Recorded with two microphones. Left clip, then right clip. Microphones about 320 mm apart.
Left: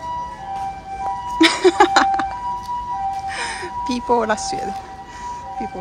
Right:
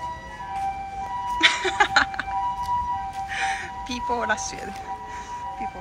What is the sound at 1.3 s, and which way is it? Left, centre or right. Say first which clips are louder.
Music: left 6 dB; centre.